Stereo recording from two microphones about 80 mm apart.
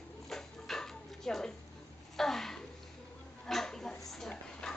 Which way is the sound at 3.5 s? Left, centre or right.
Centre.